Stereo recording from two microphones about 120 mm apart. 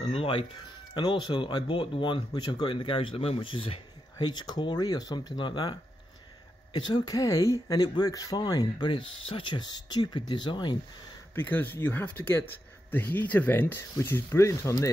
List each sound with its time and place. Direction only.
0.0 s speech: 50° left (ahead or behind)
4.2 s speech: 35° left (ahead or behind)
11.3 s speech: 15° left (ahead or behind)